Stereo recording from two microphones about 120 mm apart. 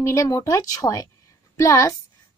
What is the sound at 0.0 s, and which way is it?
A woman's voice, 25° left (ahead or behind).